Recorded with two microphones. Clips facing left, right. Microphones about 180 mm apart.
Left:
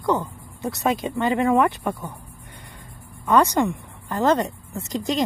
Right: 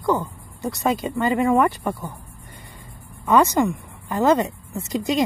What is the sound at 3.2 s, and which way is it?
Speech, 5° right (ahead or behind).